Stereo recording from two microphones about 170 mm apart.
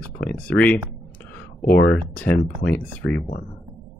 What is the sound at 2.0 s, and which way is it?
Speech, 10° left (ahead or behind).